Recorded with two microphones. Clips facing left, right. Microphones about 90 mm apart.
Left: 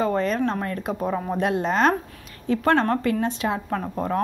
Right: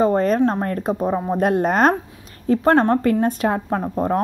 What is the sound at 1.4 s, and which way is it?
Speech, 45° right (ahead or behind).